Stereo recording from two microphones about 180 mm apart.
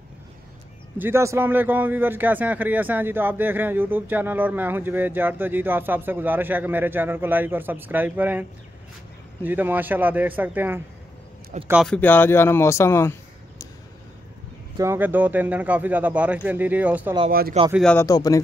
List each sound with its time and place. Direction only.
0.9 s a man's voice: 15° right (ahead or behind)
11.8 s speech: 5° left (ahead or behind)
14.8 s a man's voice: 10° right (ahead or behind)
17.3 s speech: 55° right (ahead or behind)
17.9 s speech: 20° left (ahead or behind)